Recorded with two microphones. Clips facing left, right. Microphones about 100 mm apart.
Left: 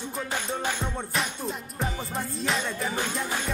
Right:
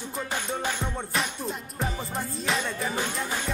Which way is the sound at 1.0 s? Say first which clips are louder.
Even; centre (ahead or behind).